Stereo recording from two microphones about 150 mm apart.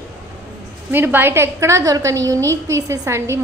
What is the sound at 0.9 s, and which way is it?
A woman's voice, 15° right (ahead or behind).